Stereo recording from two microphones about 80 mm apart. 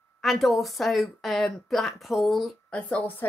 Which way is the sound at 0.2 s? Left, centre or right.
Centre.